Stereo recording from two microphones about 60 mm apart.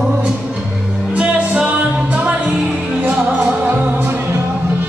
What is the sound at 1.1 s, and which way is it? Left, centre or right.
Music, centre.